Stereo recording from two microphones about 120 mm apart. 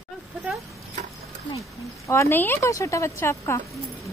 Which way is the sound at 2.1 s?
20° left (ahead or behind).